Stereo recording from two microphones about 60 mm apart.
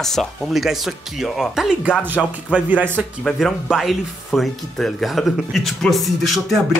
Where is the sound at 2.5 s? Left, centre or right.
Right.